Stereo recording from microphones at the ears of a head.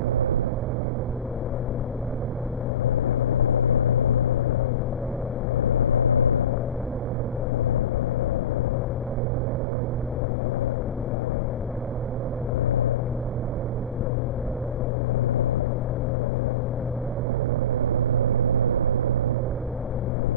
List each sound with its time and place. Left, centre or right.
2.8 s vehicle: left
5.6 s vehicle: left
17.7 s vehicle: right